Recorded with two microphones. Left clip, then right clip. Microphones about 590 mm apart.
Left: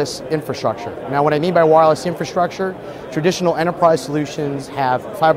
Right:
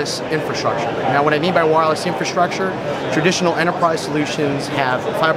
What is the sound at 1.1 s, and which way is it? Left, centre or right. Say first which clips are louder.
A man's voice: left 2 dB; left.